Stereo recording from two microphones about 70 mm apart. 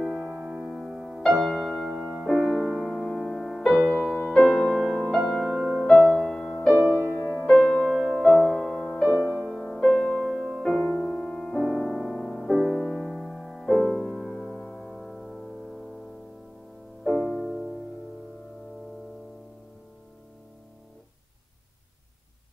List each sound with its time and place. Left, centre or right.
0.0 s music: centre
4.2 s music: centre
4.5 s music: centre
5.9 s music: centre
6.9 s music: left
7.8 s music: centre
9.1 s music: centre
9.6 s music: centre
11.6 s music: centre
11.9 s music: centre
12.4 s music: centre
12.7 s music: centre
17.0 s music: centre